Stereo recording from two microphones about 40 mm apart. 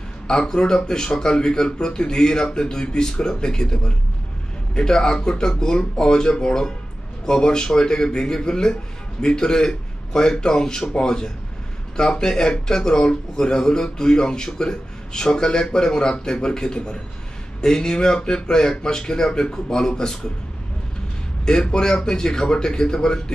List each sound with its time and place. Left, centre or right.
0.3 s speech: centre
21.5 s speech: centre